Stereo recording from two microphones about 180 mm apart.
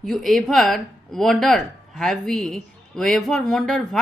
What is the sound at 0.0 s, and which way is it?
Speech, centre (ahead or behind).